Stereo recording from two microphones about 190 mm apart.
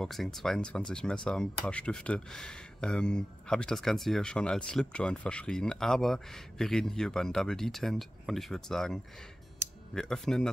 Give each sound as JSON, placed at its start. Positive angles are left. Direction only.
{"t": 0.0, "sound": "speech", "side_deg": 0}